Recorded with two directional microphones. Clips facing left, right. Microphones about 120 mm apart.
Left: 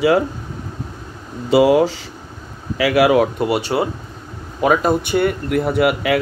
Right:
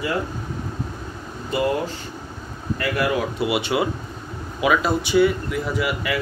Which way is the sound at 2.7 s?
80° left.